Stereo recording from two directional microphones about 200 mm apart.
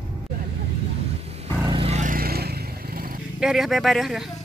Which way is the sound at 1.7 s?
30° right (ahead or behind).